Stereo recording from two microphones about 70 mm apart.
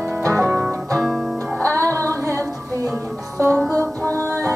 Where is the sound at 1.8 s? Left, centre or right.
Right.